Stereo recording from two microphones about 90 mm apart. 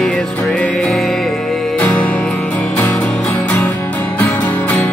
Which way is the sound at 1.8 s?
15° left (ahead or behind).